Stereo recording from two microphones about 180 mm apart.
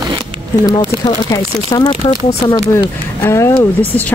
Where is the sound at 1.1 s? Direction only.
20° left (ahead or behind).